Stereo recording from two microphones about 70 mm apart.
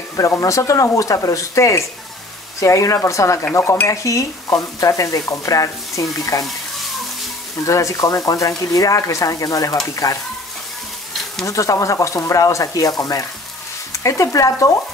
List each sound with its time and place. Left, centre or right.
0.4 s speech: left
7.6 s speech: left
11.4 s speech: left